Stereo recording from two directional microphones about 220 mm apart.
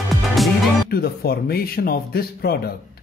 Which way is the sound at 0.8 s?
45° left (ahead or behind).